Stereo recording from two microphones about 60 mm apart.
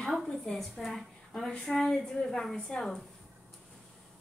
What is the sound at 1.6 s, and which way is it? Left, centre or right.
A woman's voice, centre.